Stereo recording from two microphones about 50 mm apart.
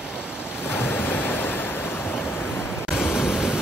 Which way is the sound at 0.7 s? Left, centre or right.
Left.